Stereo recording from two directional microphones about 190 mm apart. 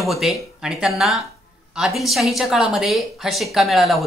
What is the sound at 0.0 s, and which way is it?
Speech, centre (ahead or behind).